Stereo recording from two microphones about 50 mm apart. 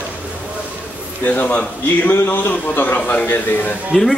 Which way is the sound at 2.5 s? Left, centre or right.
Left.